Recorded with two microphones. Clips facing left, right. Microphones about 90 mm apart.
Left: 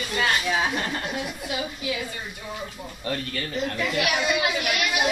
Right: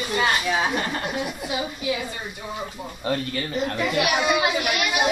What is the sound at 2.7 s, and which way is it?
A child's voice, 20° right (ahead or behind).